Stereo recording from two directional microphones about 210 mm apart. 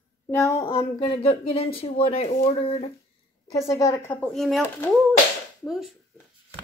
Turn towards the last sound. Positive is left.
turn(degrees=0)  # may be behind; listen again after turning